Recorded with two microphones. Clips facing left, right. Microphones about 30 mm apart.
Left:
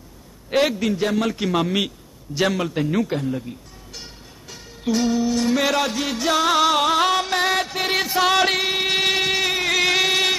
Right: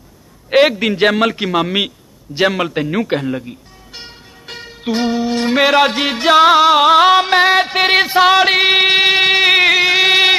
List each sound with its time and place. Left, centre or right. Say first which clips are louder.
0.5 s a man's voice: right 8 dB; right
1.3 s music: right 5 dB; right
3.1 s speech: right 6 dB; right
3.4 s music: right 3 dB; right
4.5 s music: right 10 dB; right
4.8 s music: right 3 dB; right
8.5 s music: right 9 dB; right
9.8 s a sound: right 6 dB; right
10.0 s a sound: right 8 dB; right